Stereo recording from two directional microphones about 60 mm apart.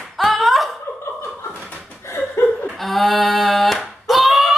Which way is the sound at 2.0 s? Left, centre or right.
Left.